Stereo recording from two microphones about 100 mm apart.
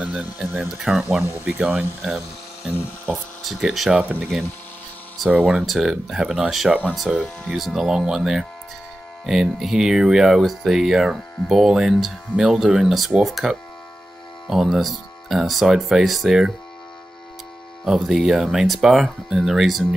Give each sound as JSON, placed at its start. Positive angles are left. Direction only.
{"t": 0.0, "sound": "a sound", "side_deg": -10}
{"t": 0.4, "sound": "speech", "side_deg": -5}
{"t": 3.1, "sound": "speech", "side_deg": -5}
{"t": 4.0, "sound": "speech", "side_deg": -15}
{"t": 5.3, "sound": "speech", "side_deg": -10}
{"t": 17.8, "sound": "speech", "side_deg": -5}